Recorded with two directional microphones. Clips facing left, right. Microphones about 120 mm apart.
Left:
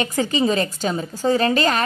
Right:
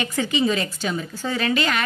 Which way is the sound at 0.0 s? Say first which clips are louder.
Left 2 dB; 40° left (ahead or behind).